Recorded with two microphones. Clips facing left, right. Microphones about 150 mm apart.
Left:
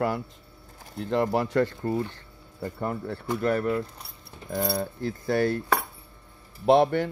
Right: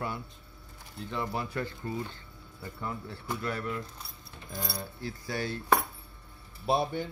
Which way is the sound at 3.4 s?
50° left (ahead or behind).